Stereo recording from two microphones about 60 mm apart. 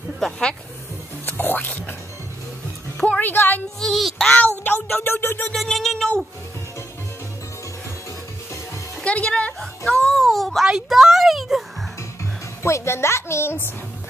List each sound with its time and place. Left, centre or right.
0.2 s a sound: centre
1.2 s music: left
3.2 s a woman's voice: left
3.8 s music: centre
4.6 s music: left
5.5 s a sound: centre
9.0 s speech: left
10.0 s a child's voice: centre
12.6 s a woman's voice: left